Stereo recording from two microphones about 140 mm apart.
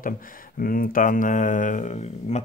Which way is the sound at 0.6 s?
90° left.